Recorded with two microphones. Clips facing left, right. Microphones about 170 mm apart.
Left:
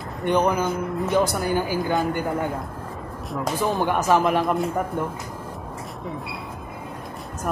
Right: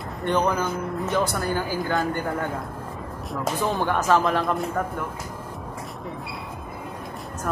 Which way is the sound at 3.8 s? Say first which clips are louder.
Left 1 dB; 15° left (ahead or behind).